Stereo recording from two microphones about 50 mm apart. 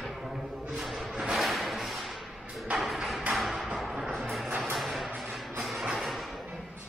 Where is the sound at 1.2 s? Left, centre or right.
Centre.